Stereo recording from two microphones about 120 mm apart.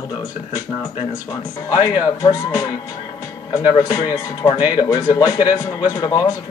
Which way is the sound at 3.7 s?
35° left (ahead or behind).